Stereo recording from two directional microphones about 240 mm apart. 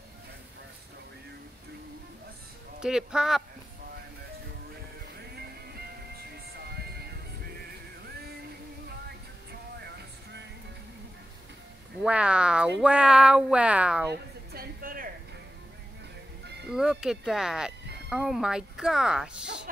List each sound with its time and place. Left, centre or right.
2.8 s speech: centre
5.1 s music: right
9.5 s vehicle: right
12.0 s speech: centre
14.5 s a sound: right
16.7 s speech: centre